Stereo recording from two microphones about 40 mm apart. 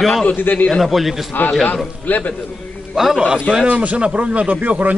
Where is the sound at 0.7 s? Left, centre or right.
Centre.